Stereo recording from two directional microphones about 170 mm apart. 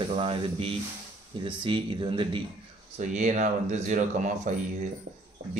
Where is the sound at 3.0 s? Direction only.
45° right (ahead or behind).